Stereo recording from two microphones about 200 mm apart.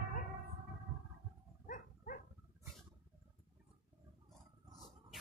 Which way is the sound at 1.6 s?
45° left (ahead or behind).